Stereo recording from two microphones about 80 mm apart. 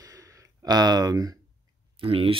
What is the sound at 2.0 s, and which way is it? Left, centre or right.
Speech, right.